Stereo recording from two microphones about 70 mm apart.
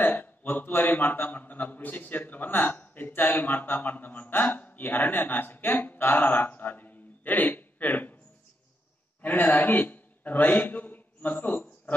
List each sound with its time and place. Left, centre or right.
0.0 s a man's voice: left
9.2 s a man's voice: left
11.5 s a sound: left